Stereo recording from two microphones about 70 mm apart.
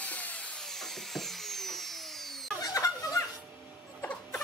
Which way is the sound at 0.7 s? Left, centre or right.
Centre.